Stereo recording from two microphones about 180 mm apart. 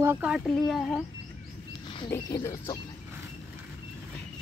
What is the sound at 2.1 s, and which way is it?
Speech, 15° left (ahead or behind).